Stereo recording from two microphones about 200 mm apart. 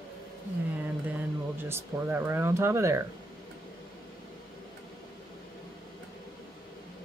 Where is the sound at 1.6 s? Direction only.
10° right (ahead or behind).